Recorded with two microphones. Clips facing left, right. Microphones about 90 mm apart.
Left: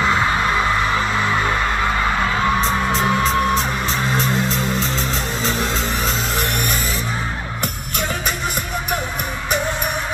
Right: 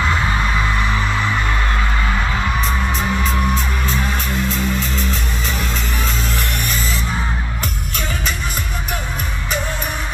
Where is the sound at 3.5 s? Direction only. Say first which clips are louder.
Left 1 dB; 25° left (ahead or behind).